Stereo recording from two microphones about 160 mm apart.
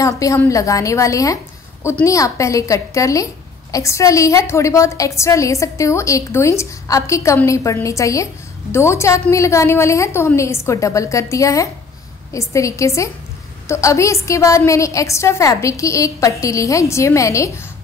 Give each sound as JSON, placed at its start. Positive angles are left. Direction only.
{"t": 0.0, "sound": "a woman's voice", "side_deg": 20}